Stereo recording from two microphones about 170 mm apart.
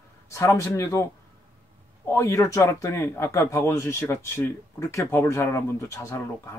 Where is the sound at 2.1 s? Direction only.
20° left (ahead or behind).